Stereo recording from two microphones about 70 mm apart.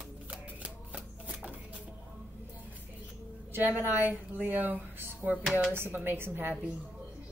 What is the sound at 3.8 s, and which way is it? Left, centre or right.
A woman's voice, right.